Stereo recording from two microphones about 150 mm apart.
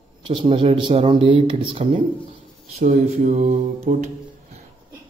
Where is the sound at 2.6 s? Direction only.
45° right (ahead or behind).